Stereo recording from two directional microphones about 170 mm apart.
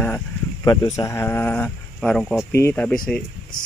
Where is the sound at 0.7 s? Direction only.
20° left (ahead or behind).